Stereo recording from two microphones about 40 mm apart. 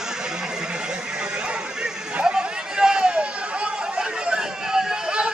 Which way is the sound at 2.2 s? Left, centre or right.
Centre.